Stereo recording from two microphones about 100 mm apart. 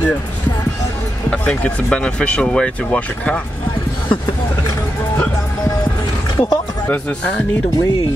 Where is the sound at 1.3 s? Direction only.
10° left (ahead or behind).